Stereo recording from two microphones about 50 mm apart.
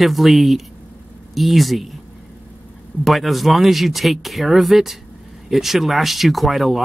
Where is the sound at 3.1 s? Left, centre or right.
Centre.